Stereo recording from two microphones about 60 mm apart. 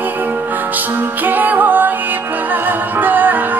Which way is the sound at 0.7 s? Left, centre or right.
Right.